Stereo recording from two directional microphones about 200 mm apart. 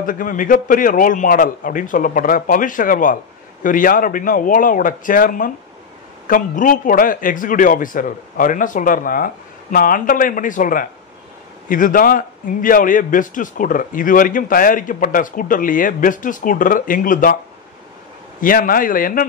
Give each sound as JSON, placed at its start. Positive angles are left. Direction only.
{"t": 0.0, "sound": "a man's voice", "side_deg": 45}
{"t": 18.4, "sound": "a man's voice", "side_deg": 45}